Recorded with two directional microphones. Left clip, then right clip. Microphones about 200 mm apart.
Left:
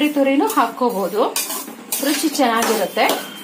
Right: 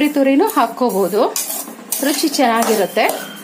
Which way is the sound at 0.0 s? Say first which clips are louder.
Right 3 dB; 55° right (ahead or behind).